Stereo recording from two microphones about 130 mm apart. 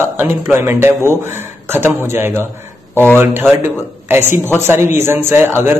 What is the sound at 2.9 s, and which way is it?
Speech, 15° left (ahead or behind).